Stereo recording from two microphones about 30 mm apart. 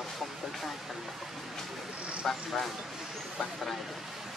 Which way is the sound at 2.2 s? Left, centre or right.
Centre.